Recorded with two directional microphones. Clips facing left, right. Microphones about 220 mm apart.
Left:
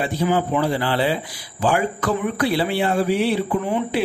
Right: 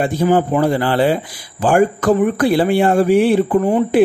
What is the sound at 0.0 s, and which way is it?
Speech, 50° right (ahead or behind).